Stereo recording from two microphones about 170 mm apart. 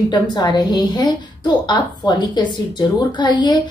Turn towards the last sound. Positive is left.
turn(degrees=25)  # may be behind; listen again after turning